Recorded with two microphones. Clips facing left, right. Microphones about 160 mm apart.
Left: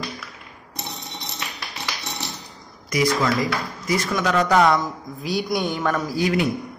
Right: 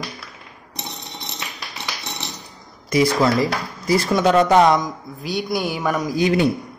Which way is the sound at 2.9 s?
30° right (ahead or behind).